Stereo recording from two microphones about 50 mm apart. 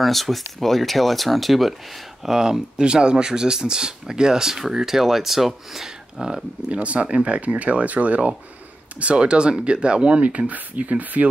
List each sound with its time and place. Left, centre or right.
0.0 s speech: centre
6.2 s speech: centre